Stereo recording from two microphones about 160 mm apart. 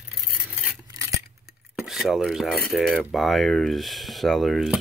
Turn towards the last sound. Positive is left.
turn(degrees=0)  # may be behind; listen again after turning